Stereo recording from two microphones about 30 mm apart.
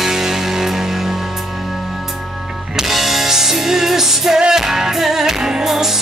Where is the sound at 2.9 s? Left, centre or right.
Centre.